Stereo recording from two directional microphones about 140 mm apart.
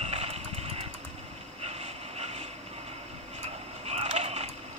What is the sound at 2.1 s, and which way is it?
Vehicle, 50° right (ahead or behind).